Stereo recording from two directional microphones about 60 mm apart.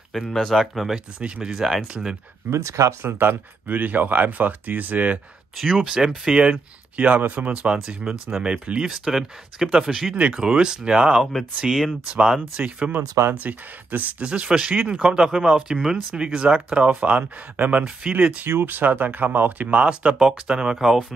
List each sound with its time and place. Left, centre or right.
0.3 s speech: centre
0.9 s speech: centre
1.5 s speech: centre
2.5 s speech: right
3.0 s speech: right
5.9 s speech: centre
6.5 s speech: right; by 10.1 s centre
10.1 s speech: centre
12.5 s speech: centre
14.2 s speech: centre
18.0 s speech: centre
18.4 s speech: right
19.8 s speech: centre